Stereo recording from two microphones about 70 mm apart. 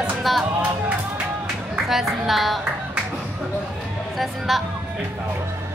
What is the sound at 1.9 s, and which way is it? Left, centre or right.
Speech, centre.